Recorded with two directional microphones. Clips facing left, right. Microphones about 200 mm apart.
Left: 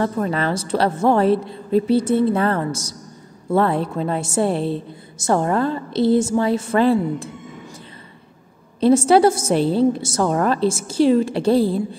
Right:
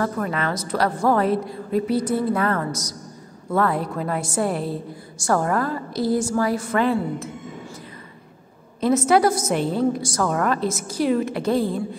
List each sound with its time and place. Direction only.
0.0 s a woman's voice: 30° left (ahead or behind)
8.8 s a woman's voice: 30° left (ahead or behind)